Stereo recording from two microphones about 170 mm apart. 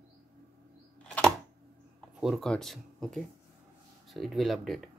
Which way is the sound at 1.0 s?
Centre (ahead or behind).